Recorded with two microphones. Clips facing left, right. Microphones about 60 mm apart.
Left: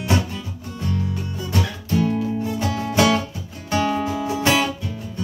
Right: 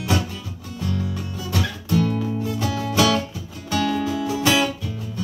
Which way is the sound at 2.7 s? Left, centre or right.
Left.